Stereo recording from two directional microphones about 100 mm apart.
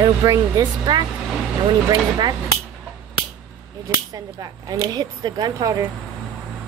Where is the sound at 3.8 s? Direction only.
40° right (ahead or behind).